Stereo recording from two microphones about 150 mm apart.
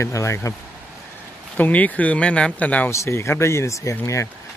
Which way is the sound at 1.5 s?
10° left (ahead or behind).